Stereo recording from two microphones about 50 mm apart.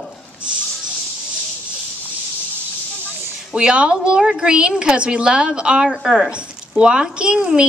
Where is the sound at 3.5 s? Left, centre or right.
Centre.